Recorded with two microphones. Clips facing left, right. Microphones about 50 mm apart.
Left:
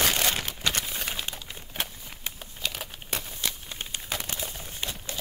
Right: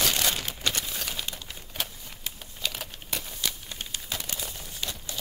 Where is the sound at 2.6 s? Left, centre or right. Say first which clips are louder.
Even; centre.